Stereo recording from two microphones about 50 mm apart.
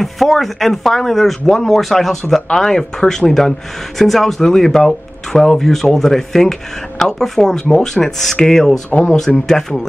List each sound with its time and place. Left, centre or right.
0.0 s speech: centre
8.9 s speech: left
9.5 s speech: centre